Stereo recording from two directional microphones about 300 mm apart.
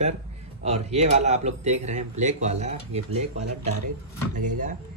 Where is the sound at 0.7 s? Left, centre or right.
Right.